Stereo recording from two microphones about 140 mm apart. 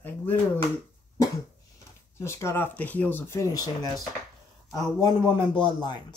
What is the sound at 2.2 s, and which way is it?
Speech, 20° left (ahead or behind).